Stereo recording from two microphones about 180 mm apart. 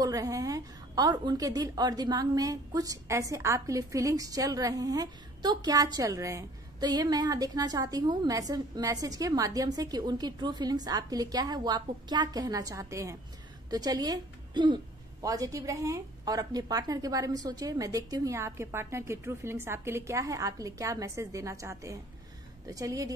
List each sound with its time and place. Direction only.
0.0 s a woman's voice: 20° right (ahead or behind)